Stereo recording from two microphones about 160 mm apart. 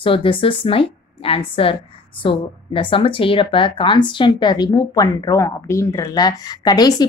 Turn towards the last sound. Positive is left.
turn(degrees=25)  # may be behind; listen again after turning